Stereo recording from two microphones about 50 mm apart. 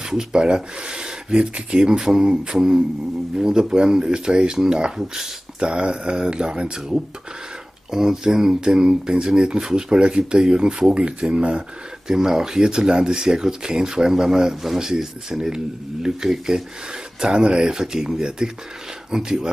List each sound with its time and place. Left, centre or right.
0.1 s speech: centre
12.1 s speech: centre